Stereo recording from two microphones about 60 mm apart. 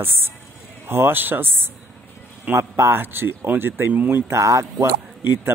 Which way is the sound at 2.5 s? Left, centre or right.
Right.